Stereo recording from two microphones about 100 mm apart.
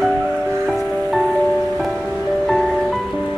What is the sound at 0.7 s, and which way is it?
Music, centre (ahead or behind).